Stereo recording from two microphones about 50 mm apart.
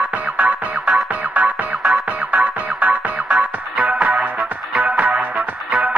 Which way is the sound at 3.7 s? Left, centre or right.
Centre.